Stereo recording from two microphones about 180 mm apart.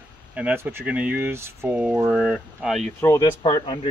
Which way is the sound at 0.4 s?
10° right (ahead or behind).